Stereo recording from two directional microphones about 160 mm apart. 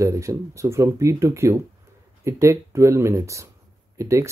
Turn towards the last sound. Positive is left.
turn(degrees=-20)  # may be behind; listen again after turning